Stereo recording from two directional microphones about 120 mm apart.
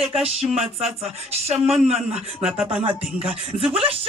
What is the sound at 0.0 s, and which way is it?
Speech, 55° right (ahead or behind).